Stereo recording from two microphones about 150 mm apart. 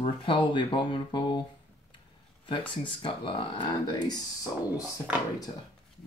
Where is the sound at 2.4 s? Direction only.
35° left (ahead or behind).